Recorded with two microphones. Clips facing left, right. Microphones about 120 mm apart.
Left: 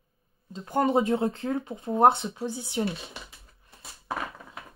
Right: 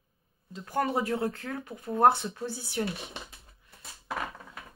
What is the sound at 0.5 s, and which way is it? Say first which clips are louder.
A woman's voice: left 5 dB; 25° left (ahead or behind).